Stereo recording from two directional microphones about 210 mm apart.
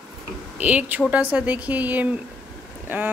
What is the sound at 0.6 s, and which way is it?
Speech, 5° right (ahead or behind).